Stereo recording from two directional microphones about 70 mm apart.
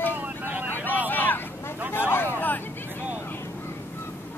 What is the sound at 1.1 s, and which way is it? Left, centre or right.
Vehicle, left.